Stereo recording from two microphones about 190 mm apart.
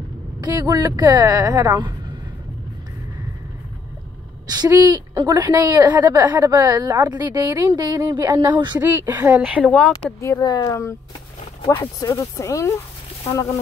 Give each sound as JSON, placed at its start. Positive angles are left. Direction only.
{"t": 0.4, "sound": "a woman's voice", "side_deg": -20}
{"t": 4.5, "sound": "a woman's voice", "side_deg": -20}
{"t": 8.8, "sound": "speech", "side_deg": -10}
{"t": 9.7, "sound": "speech", "side_deg": 5}
{"t": 10.2, "sound": "speech", "side_deg": 20}